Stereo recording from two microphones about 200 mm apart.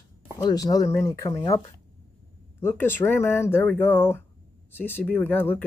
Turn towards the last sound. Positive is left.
turn(degrees=10)  # may be behind; listen again after turning